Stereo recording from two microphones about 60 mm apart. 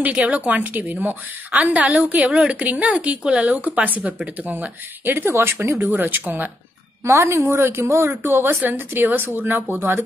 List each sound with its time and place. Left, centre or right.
0.0 s speech: right
5.9 s speech: right
7.1 s a woman's voice: right